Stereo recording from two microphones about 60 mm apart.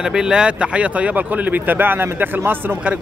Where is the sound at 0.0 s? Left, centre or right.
Centre.